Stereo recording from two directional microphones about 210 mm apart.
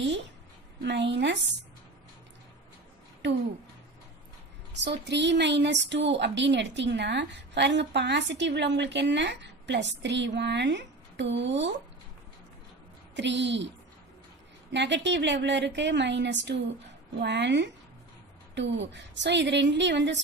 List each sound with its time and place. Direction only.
0.8 s a woman's voice: 55° right (ahead or behind)
4.8 s a woman's voice: 55° right (ahead or behind)
13.1 s a woman's voice: 55° right (ahead or behind)
14.7 s a woman's voice: 55° right (ahead or behind)